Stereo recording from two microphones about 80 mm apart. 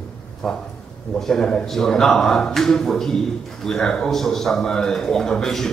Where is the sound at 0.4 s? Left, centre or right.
Centre.